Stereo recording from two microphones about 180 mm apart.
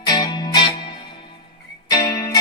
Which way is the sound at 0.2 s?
25° left (ahead or behind).